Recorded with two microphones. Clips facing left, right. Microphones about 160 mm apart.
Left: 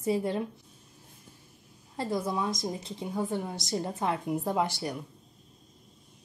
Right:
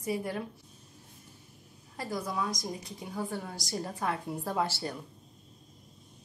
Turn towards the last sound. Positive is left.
turn(degrees=15)  # may be behind; listen again after turning